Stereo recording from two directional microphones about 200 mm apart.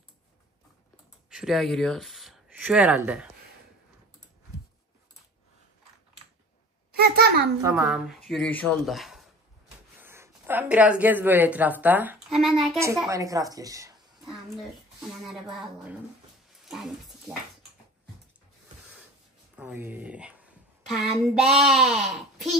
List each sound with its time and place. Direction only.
1.3 s speech: centre (ahead or behind)
6.9 s a sound: 50° right (ahead or behind)
7.6 s a child's voice: 5° right (ahead or behind)
9.9 s speech: 10° right (ahead or behind)
12.8 s a woman's voice: 15° right (ahead or behind)
14.2 s a woman's voice: centre (ahead or behind)
19.5 s a woman's voice: 10° right (ahead or behind)